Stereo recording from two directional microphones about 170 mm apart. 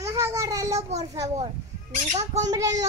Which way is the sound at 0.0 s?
20° right (ahead or behind).